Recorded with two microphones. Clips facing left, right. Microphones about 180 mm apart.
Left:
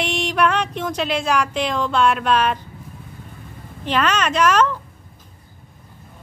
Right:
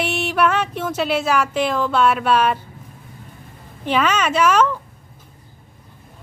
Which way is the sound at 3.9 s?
10° right (ahead or behind).